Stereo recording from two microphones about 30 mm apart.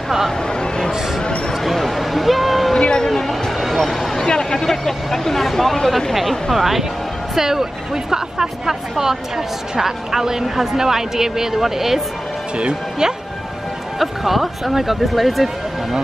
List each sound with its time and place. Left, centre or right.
0.5 s a sound: left
1.8 s a sound: centre
4.3 s speech: left
4.6 s speech: centre
6.5 s a woman's voice: centre
13.0 s speech: right
13.9 s speech: centre